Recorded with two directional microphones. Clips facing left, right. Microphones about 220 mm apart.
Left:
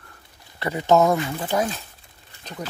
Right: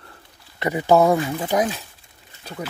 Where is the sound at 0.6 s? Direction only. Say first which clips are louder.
Right 2 dB; 10° right (ahead or behind).